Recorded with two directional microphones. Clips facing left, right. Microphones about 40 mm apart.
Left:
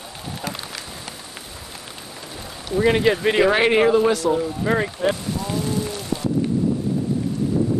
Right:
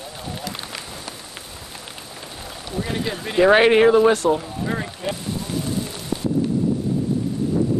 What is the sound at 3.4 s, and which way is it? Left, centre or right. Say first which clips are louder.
Speech: right 6 dB; right.